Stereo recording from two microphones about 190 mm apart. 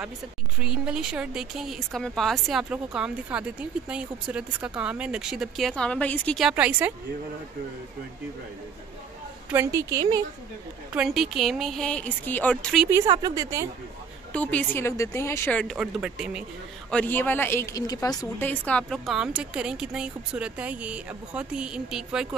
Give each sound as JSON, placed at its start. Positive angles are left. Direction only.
{"t": 0.6, "sound": "speech", "side_deg": -5}
{"t": 6.5, "sound": "speech", "side_deg": -10}
{"t": 9.5, "sound": "speech", "side_deg": -15}
{"t": 11.0, "sound": "speech", "side_deg": 0}
{"t": 12.9, "sound": "speech", "side_deg": -20}
{"t": 14.3, "sound": "speech", "side_deg": 5}
{"t": 16.9, "sound": "speech", "side_deg": 10}